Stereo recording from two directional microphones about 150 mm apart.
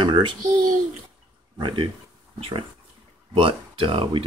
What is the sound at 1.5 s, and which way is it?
Speech, 30° right (ahead or behind).